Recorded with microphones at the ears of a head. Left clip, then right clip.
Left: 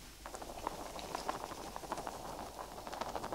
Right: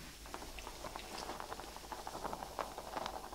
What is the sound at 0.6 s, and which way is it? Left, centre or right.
Boiling, left.